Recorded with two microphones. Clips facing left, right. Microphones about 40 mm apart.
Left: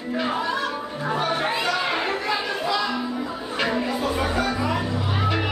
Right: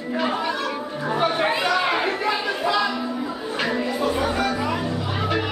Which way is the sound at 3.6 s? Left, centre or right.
Centre.